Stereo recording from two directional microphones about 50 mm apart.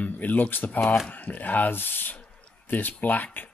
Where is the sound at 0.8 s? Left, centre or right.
Centre.